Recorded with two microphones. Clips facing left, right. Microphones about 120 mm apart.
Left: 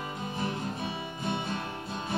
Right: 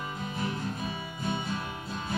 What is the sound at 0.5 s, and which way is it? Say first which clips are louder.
Music: even; 30° left (ahead or behind).